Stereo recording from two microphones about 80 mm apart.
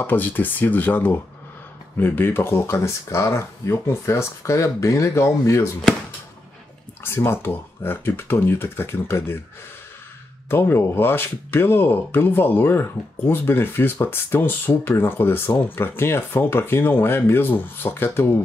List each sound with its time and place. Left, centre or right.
0.0 s speech: left
7.0 s speech: left
10.5 s speech: left